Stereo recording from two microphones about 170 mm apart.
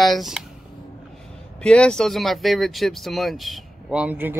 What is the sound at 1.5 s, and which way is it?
Speech, 5° left (ahead or behind).